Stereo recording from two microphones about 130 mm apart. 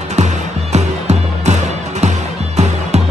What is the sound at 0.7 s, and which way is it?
Music, 60° right (ahead or behind).